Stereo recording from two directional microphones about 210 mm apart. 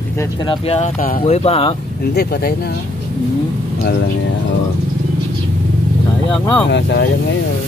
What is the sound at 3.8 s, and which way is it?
Speech, 55° left (ahead or behind).